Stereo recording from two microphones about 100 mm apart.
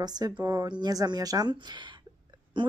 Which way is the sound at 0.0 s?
40° right (ahead or behind).